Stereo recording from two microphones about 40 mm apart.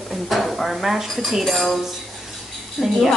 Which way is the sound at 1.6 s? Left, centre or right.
Centre.